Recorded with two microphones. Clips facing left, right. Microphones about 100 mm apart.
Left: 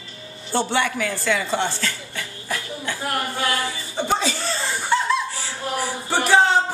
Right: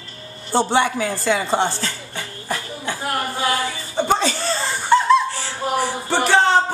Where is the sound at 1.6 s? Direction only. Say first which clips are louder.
Right 2 dB; 25° right (ahead or behind).